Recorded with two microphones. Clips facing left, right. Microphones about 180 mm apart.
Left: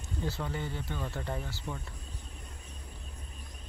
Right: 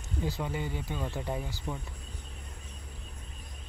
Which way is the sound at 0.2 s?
15° right (ahead or behind).